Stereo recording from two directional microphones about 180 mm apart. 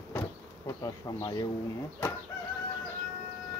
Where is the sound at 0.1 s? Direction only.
15° left (ahead or behind).